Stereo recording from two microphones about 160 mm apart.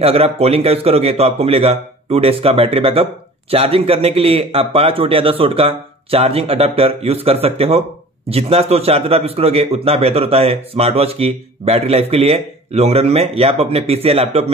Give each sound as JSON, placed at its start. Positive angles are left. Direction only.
{"t": 0.0, "sound": "a man's voice", "side_deg": -40}